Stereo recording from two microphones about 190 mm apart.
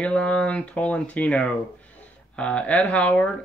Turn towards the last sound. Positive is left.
turn(degrees=5)  # may be behind; listen again after turning